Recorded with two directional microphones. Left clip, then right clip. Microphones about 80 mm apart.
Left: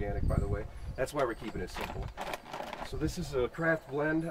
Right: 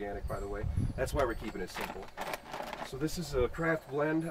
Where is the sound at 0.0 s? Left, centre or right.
Centre.